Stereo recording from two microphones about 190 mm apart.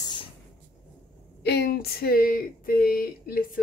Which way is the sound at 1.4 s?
60° left (ahead or behind).